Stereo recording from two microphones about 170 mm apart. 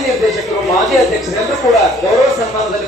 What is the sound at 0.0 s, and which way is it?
Speech, centre (ahead or behind).